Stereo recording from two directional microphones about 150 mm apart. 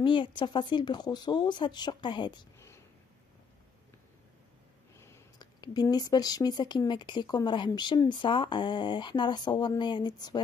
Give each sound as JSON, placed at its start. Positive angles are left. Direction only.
{"t": 0.0, "sound": "speech", "side_deg": 30}
{"t": 4.9, "sound": "speech", "side_deg": 20}